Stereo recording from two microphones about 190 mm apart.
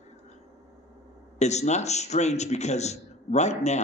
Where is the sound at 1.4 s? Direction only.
35° left (ahead or behind).